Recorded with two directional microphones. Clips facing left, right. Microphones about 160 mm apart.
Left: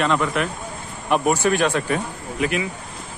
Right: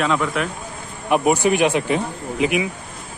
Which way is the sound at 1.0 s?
15° right (ahead or behind).